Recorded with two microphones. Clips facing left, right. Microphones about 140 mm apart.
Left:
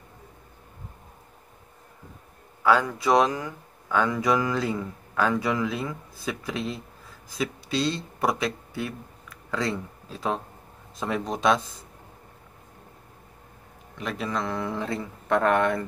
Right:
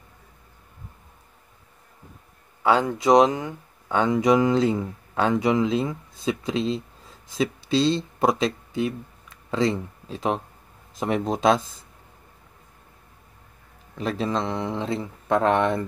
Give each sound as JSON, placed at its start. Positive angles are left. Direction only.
{"t": 2.6, "sound": "speech", "side_deg": -25}
{"t": 13.9, "sound": "speech", "side_deg": -30}